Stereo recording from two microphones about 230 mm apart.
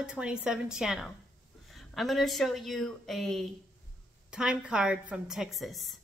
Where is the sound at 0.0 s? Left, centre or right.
Centre.